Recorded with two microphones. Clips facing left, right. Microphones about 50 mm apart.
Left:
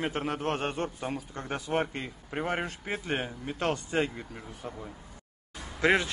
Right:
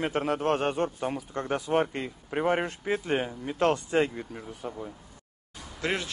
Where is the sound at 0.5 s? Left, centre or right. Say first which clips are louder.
Right 5 dB; centre.